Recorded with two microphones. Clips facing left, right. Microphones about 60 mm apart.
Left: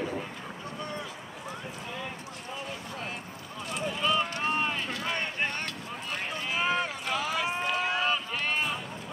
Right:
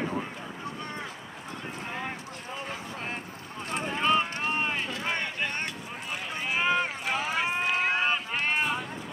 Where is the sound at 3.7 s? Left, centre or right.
Right.